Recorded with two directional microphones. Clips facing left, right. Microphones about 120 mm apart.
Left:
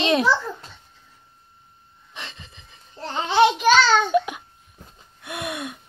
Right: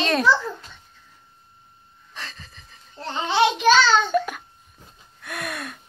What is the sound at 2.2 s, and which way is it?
Wheeze, 25° left (ahead or behind).